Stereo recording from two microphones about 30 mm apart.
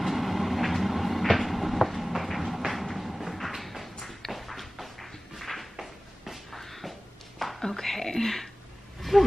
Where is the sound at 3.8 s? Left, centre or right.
Centre.